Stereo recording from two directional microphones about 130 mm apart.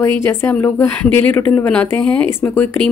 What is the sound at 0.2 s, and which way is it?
A woman's voice, 20° left (ahead or behind).